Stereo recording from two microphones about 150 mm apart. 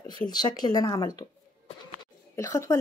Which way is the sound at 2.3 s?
20° left (ahead or behind).